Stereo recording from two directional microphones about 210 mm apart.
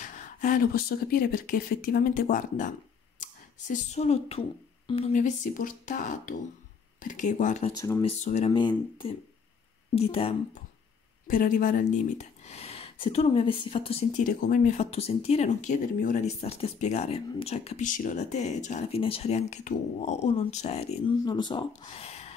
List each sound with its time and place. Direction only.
0.0 s speech: 35° left (ahead or behind)
11.2 s speech: 40° left (ahead or behind)
14.2 s speech: 40° left (ahead or behind)